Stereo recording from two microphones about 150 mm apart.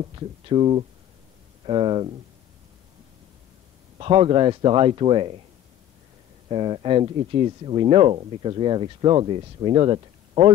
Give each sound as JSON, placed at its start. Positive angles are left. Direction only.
{"t": 0.0, "sound": "speech", "side_deg": -35}
{"t": 4.0, "sound": "speech", "side_deg": -40}
{"t": 6.5, "sound": "speech", "side_deg": -35}